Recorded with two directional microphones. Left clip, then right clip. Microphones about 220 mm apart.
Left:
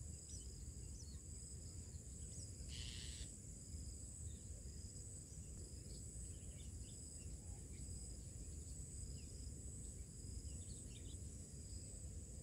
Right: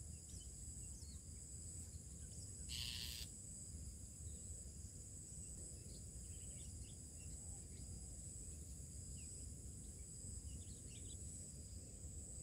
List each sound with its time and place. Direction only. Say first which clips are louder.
2.7 s owl: right 7 dB; 50° right (ahead or behind)